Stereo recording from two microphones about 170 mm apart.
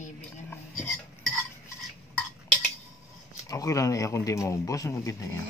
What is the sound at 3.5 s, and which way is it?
Speech, 20° left (ahead or behind).